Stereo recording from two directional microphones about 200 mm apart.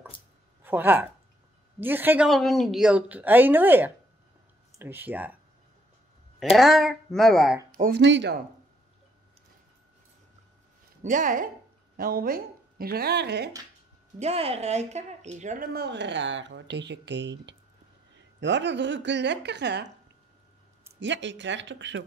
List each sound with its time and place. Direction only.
0.7 s a woman's voice: 10° right (ahead or behind)
6.5 s speech: centre (ahead or behind)
7.7 s speech: 45° right (ahead or behind)
8.0 s speech: 65° right (ahead or behind)
11.0 s a woman's voice: 40° right (ahead or behind); by 13.5 s 55° right (ahead or behind)
14.2 s speech: 30° right (ahead or behind); by 19.9 s 60° right (ahead or behind)
21.0 s speech: 65° right (ahead or behind)